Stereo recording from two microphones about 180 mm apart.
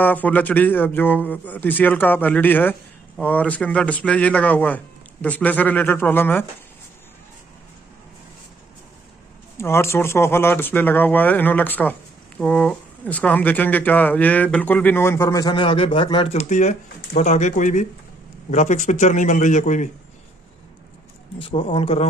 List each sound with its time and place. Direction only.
0.0 s speech: 10° left (ahead or behind)
9.6 s a man's voice: 15° left (ahead or behind); by 19.9 s 45° left (ahead or behind)
21.4 s speech: 30° left (ahead or behind)